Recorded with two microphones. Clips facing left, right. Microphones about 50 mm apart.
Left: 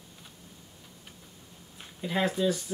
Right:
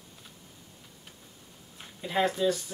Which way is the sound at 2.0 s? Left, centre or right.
Centre.